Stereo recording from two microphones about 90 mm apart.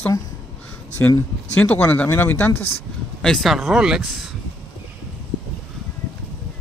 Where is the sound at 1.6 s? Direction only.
15° left (ahead or behind).